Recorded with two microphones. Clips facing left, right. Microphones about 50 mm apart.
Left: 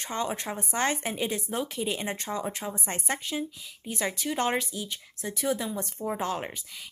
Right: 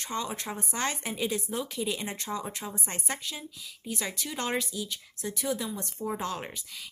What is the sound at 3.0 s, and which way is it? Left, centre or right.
A woman's voice, left.